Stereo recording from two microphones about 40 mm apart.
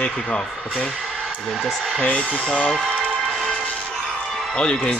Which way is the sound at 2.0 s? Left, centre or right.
Left.